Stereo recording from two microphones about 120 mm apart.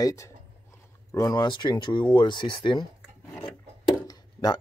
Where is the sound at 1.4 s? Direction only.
40° left (ahead or behind).